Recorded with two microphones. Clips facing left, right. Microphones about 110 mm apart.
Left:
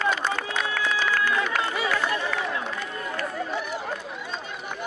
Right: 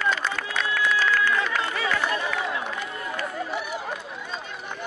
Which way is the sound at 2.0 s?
20° right (ahead or behind).